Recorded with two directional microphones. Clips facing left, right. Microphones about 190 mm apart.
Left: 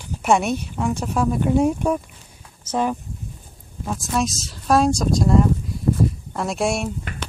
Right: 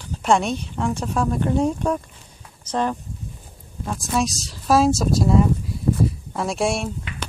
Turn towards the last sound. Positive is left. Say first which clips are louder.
# left 2 dB
turn(degrees=45)  # may be behind; listen again after turning